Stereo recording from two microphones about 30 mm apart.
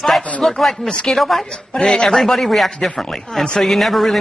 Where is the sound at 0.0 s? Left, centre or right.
Centre.